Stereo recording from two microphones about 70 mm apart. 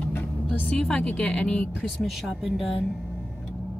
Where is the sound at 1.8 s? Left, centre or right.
Centre.